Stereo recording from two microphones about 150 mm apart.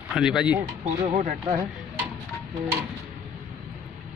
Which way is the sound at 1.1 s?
45° right (ahead or behind).